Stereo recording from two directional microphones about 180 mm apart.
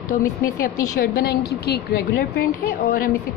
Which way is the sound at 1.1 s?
60° left (ahead or behind).